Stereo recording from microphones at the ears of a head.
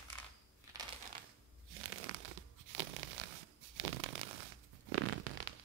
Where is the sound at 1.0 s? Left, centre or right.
Right.